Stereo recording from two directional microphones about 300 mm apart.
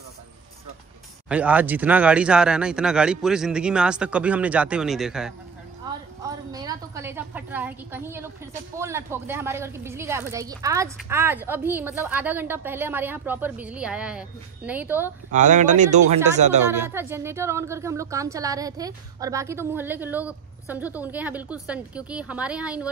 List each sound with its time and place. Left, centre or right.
1.3 s speech: centre
6.2 s a sound: centre
8.7 s a woman's voice: centre
15.3 s speech: right
16.9 s a woman's voice: centre